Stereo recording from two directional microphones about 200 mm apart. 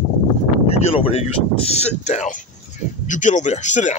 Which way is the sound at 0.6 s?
30° left (ahead or behind).